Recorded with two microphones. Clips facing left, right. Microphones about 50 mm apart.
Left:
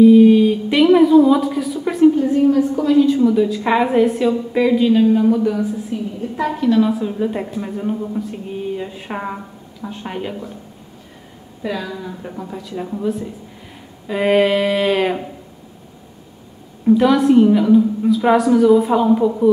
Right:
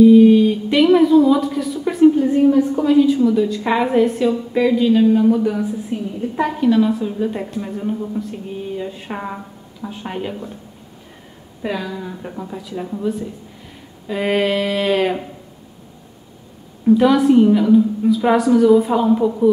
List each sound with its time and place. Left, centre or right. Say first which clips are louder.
0.0 s a woman's voice: even; centre
3.2 s a woman's voice: left 1 dB; centre
5.9 s a woman's voice: right 1 dB; right
6.6 s a woman's voice: even; centre
6.9 s a sound: left 1 dB; centre
9.8 s a woman's voice: even; centre
11.6 s speech: even; centre
12.0 s a woman's voice: even; centre
16.8 s a woman's voice: even; centre